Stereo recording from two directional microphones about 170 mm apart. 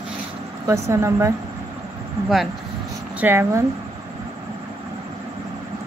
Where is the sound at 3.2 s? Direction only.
15° right (ahead or behind).